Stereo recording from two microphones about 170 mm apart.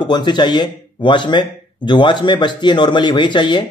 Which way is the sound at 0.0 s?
25° left (ahead or behind).